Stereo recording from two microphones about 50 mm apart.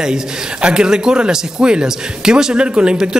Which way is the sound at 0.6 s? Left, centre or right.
Centre.